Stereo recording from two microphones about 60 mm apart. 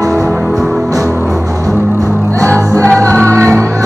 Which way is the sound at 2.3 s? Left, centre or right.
Left.